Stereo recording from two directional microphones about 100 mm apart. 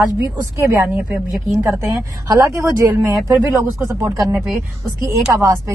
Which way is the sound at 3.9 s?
35° right (ahead or behind).